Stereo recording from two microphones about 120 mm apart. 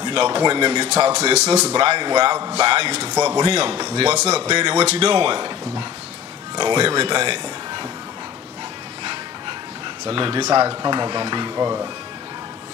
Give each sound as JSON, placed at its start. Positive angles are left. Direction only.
{"t": 0.0, "sound": "speech", "side_deg": -40}
{"t": 1.3, "sound": "speech", "side_deg": -60}
{"t": 1.7, "sound": "speech", "side_deg": -40}
{"t": 3.2, "sound": "a man's voice", "side_deg": -25}
{"t": 3.4, "sound": "speech", "side_deg": -40}
{"t": 4.7, "sound": "speech", "side_deg": -55}
{"t": 5.1, "sound": "speech", "side_deg": -40}
{"t": 10.0, "sound": "speech", "side_deg": -45}
{"t": 10.4, "sound": "speech", "side_deg": -30}